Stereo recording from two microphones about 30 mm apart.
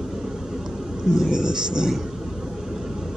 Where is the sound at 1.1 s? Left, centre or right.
Right.